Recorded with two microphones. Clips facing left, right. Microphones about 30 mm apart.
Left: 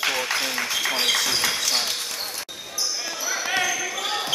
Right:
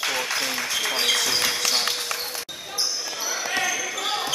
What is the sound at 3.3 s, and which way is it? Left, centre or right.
Basketball bounce, centre.